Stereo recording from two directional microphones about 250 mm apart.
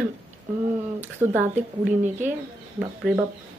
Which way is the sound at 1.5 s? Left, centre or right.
Right.